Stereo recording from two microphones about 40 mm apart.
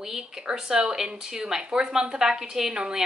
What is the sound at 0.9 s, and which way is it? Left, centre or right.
A woman's voice, centre.